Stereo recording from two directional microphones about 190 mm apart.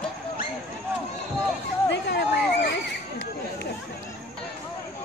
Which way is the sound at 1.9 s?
65° left (ahead or behind).